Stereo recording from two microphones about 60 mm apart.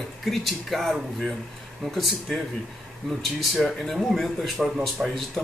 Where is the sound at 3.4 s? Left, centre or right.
Centre.